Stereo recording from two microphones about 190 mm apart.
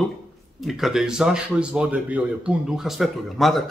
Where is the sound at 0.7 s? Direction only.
Centre (ahead or behind).